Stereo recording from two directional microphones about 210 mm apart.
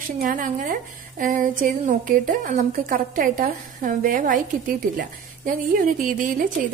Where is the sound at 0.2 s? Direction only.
40° right (ahead or behind).